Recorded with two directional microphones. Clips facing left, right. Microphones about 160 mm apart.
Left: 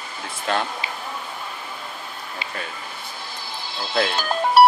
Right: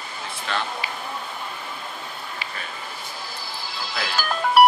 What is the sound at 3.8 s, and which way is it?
Speech, 25° left (ahead or behind).